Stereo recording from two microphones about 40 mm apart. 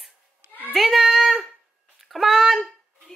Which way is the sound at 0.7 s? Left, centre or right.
Centre.